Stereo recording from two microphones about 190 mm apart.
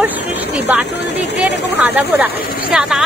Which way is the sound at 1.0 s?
65° left (ahead or behind).